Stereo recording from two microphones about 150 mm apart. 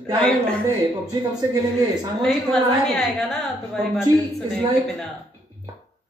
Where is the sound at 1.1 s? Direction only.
25° right (ahead or behind).